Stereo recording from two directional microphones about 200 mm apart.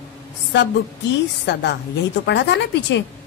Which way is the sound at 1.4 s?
60° left (ahead or behind).